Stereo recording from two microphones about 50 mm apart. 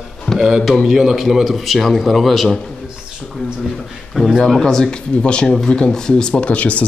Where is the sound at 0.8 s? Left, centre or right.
Centre.